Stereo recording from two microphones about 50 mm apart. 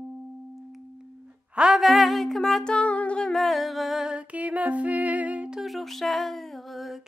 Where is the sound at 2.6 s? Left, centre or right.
Left.